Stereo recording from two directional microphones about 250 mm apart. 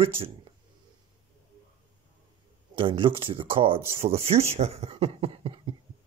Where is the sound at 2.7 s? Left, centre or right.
Right.